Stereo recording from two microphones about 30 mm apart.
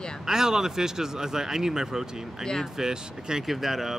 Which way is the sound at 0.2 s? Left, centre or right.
Centre.